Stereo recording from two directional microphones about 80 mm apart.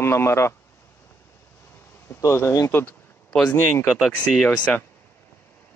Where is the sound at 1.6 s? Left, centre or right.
Left.